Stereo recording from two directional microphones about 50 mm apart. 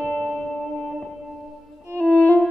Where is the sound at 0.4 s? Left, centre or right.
Centre.